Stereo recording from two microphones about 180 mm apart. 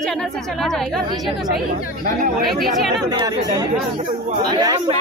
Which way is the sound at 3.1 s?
20° right (ahead or behind).